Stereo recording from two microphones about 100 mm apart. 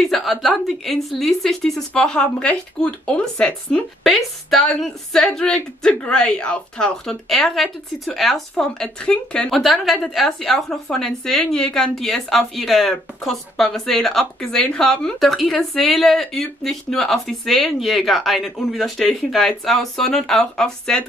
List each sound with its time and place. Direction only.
0.0 s a woman's voice: centre (ahead or behind)